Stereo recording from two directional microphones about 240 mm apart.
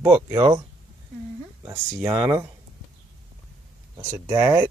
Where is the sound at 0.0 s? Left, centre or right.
Centre.